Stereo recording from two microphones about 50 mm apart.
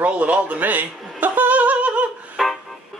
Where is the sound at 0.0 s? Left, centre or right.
Right.